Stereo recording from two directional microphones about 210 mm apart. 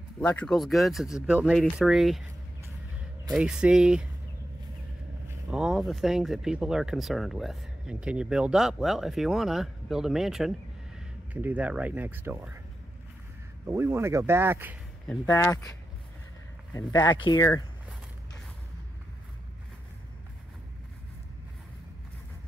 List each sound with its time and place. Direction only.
0.2 s speech: 5° left (ahead or behind)
3.3 s speech: 5° right (ahead or behind)
5.5 s speech: centre (ahead or behind)
13.7 s speech: 10° right (ahead or behind)
15.2 s speech: 15° left (ahead or behind)
17.0 s speech: 20° left (ahead or behind)